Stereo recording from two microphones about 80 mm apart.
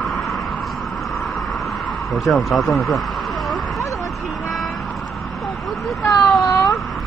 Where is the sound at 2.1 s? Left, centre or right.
Centre.